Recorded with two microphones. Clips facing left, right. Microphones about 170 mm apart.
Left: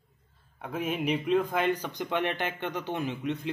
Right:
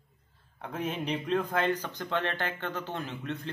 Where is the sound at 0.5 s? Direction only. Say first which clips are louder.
Left 2 dB; 10° left (ahead or behind).